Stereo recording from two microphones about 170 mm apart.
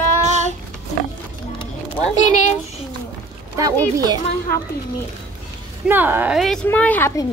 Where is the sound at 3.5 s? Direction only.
20° right (ahead or behind).